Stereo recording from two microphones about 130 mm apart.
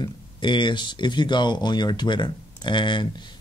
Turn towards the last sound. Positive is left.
turn(degrees=35)  # may be behind; listen again after turning